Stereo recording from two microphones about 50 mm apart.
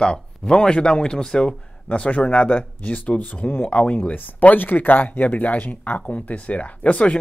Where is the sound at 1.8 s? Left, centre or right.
Left.